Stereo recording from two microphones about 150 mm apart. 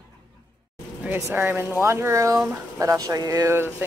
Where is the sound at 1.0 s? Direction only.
15° right (ahead or behind).